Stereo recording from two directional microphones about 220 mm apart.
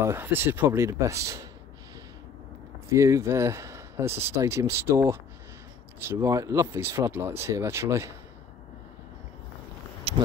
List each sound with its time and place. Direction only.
0.0 s speech: 10° right (ahead or behind)
2.9 s speech: 10° right (ahead or behind)
10.1 s a sound: 25° right (ahead or behind)